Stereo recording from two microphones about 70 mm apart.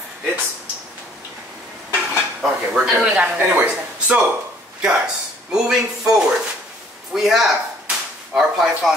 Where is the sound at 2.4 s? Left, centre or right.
Centre.